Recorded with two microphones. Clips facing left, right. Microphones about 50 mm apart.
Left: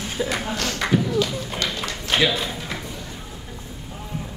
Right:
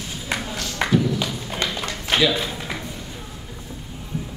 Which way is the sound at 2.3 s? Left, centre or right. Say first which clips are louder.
Right 1 dB; centre.